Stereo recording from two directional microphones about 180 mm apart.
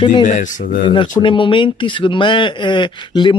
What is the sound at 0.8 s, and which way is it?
Speech, 25° left (ahead or behind).